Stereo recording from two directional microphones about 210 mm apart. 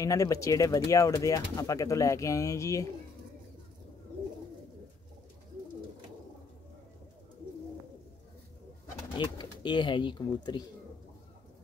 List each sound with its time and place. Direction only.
0.0 s speech: 15° left (ahead or behind)
9.2 s speech: 20° left (ahead or behind)